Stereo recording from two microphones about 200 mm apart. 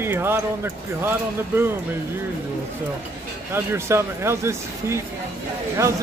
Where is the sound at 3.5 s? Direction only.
15° right (ahead or behind).